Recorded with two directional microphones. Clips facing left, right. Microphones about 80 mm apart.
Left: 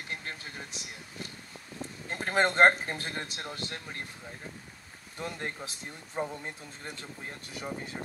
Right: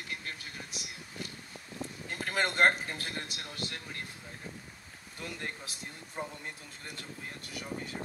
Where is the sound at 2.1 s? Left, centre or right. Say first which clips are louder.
Left 5 dB; left.